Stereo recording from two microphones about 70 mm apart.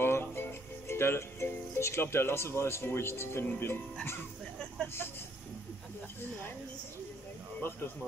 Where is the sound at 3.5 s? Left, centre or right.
Left.